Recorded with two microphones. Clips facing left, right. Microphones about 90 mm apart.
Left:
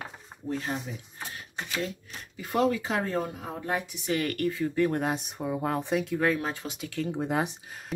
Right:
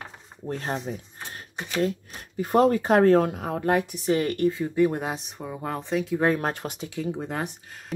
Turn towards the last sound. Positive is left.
turn(degrees=10)  # may be behind; listen again after turning